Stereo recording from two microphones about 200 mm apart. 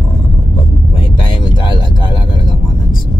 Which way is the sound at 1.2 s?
25° left (ahead or behind).